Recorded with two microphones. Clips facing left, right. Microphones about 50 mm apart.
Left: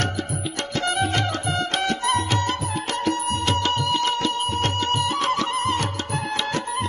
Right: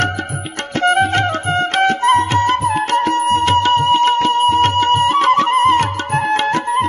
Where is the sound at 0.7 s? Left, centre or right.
Right.